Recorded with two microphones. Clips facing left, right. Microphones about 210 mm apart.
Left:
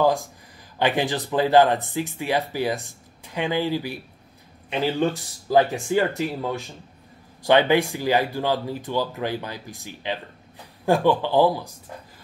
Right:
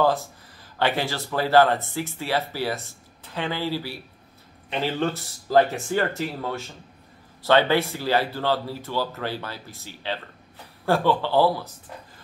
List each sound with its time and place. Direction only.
0.7 s speech: 15° left (ahead or behind)